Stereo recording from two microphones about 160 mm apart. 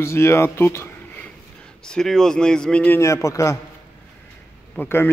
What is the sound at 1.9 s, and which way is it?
A man's voice, 5° left (ahead or behind).